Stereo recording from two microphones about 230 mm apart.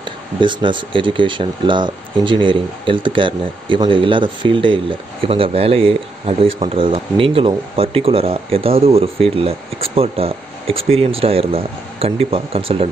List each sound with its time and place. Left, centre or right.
0.4 s speech: right